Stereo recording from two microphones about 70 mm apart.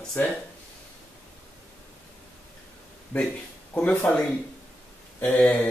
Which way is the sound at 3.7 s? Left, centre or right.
Left.